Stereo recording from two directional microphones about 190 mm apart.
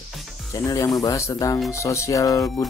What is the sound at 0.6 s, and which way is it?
A man's voice, 15° left (ahead or behind).